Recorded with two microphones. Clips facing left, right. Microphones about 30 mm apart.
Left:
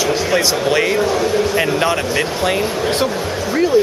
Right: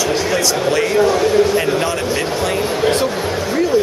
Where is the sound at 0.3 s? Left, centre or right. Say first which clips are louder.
Left 1 dB; centre.